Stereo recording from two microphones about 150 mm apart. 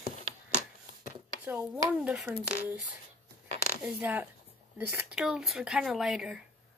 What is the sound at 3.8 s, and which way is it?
Speech, 10° right (ahead or behind).